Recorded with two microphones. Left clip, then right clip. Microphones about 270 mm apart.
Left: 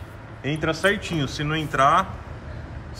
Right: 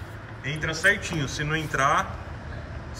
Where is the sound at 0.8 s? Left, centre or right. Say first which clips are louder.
Right 2 dB; centre.